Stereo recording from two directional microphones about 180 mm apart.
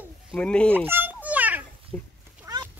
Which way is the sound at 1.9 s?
10° left (ahead or behind).